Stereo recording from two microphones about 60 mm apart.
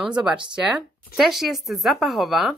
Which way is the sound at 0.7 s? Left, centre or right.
Centre.